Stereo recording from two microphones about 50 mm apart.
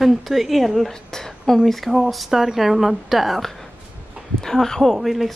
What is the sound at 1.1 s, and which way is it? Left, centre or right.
Whispering, centre.